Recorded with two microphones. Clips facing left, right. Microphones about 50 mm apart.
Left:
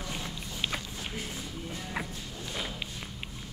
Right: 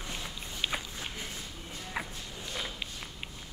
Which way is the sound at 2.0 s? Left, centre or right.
Centre.